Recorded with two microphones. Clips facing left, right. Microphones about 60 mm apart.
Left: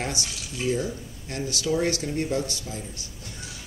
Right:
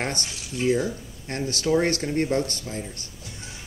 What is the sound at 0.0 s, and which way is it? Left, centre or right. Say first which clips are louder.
A woman's voice: right 2 dB; right.